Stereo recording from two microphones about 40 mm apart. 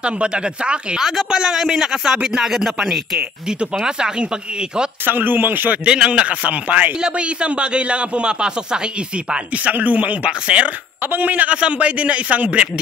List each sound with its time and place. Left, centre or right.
0.0 s speech: right
0.9 s speech: centre
3.8 s speech: centre
5.0 s speech: right
5.9 s a man's voice: right
7.0 s speech: right
11.0 s speech: right
11.5 s a man's voice: right